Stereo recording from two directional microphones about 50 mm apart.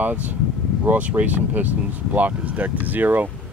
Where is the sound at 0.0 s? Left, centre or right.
Right.